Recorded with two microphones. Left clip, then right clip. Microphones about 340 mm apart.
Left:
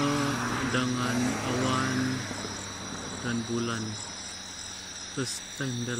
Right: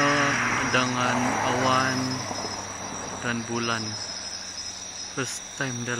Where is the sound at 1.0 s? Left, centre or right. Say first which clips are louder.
Right 6 dB; right.